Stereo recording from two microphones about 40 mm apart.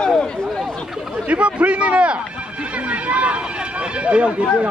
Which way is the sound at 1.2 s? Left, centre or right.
Right.